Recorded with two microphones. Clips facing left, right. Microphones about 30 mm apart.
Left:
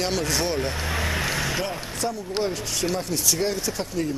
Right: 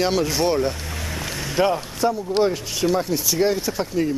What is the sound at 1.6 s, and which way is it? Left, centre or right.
Speech, right.